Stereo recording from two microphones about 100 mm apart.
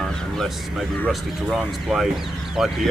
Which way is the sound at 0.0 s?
5° left (ahead or behind).